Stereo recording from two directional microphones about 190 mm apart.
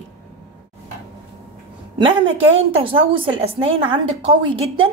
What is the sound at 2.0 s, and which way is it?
A woman's voice, 30° right (ahead or behind).